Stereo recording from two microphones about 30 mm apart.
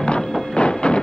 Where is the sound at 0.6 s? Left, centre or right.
Left.